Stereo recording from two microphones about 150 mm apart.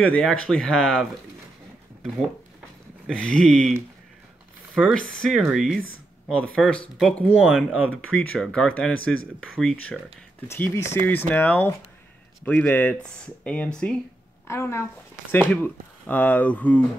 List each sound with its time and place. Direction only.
0.1 s speech: 5° left (ahead or behind)
3.1 s speech: 5° left (ahead or behind)
4.7 s speech: 5° left (ahead or behind)
7.4 s speech: 10° right (ahead or behind)
8.1 s speech: 5° left (ahead or behind)
10.5 s speech: 20° left (ahead or behind)
14.5 s speech: 20° left (ahead or behind)